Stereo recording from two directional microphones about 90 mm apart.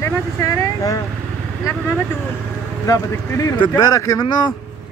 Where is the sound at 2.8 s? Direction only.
40° left (ahead or behind).